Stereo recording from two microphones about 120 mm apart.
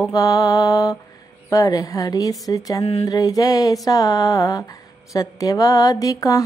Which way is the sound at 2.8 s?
50° left (ahead or behind).